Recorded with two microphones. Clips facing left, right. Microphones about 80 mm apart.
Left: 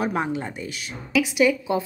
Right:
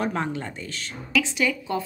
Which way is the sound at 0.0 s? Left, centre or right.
Centre.